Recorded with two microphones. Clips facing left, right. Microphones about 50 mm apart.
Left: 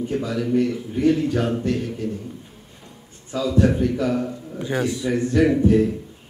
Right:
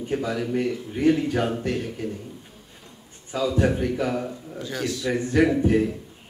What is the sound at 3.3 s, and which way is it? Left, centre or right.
Speech, centre.